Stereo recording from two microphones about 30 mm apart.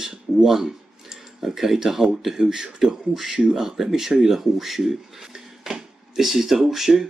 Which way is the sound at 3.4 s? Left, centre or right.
Right.